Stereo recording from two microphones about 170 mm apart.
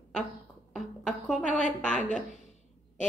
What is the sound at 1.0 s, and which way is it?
A woman's voice, 5° left (ahead or behind).